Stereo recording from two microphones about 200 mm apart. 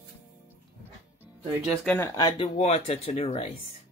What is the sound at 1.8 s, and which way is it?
Speech, 10° left (ahead or behind).